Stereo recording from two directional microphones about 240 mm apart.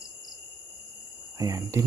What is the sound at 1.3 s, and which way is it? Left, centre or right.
Speech, centre.